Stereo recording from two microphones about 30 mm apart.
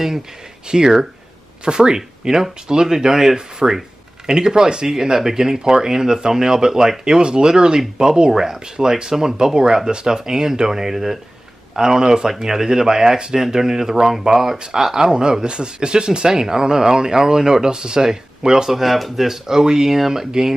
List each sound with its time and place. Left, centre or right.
0.7 s speech: right
5.2 s speech: centre
7.2 s speech: right
10.1 s speech: centre
14.6 s speech: right
18.7 s speech: centre
19.2 s speech: centre